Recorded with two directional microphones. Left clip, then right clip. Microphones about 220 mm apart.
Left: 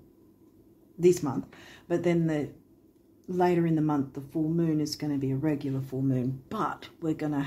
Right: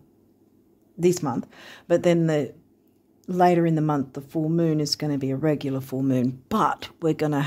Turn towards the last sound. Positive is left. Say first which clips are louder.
# right 7 dB
turn(degrees=-55)  # may be behind; listen again after turning